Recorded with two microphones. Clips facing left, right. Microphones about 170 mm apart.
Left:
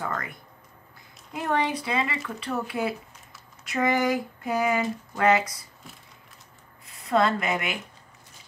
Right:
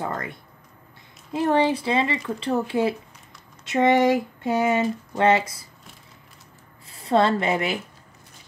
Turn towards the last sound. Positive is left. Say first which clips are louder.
# right 4 dB
turn(degrees=-30)  # may be behind; listen again after turning